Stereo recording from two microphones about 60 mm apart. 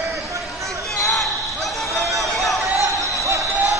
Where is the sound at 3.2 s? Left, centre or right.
Right.